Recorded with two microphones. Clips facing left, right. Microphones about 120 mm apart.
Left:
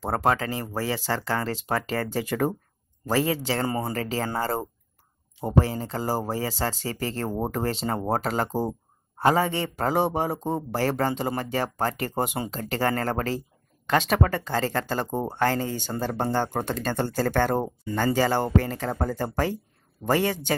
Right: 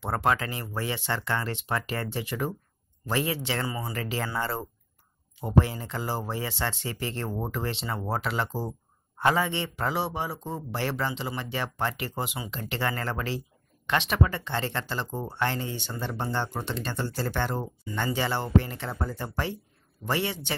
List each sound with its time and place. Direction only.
0.0 s speech: 40° left (ahead or behind)
4.0 s speech: 35° left (ahead or behind)